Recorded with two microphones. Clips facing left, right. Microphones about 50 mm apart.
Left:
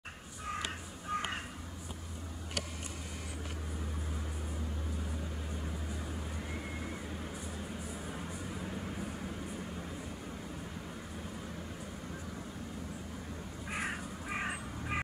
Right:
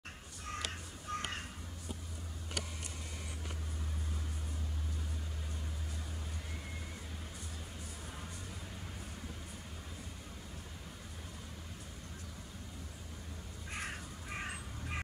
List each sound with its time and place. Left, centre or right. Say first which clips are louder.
1.1 s crow: left 4 dB; centre
8.2 s vehicle: left 7 dB; left
13.7 s crow: left 5 dB; centre